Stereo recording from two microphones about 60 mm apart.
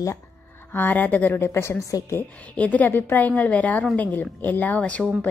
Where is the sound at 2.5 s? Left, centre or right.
Left.